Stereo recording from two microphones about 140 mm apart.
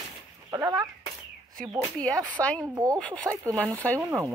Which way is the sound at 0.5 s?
25° right (ahead or behind).